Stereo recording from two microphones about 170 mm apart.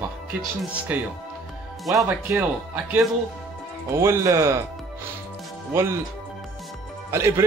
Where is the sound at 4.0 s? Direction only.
15° right (ahead or behind).